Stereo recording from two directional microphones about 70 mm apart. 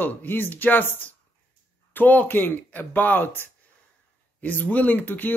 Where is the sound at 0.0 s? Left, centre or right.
Left.